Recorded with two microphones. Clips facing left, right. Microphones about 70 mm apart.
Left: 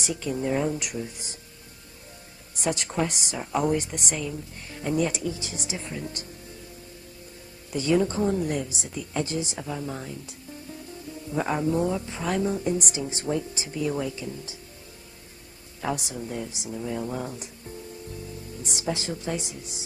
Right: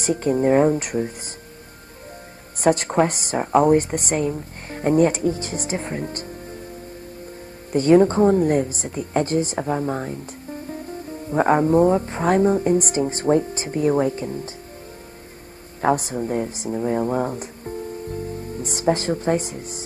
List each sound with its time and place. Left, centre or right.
0.0 s speech: right
2.6 s speech: right
7.7 s speech: right
15.8 s speech: right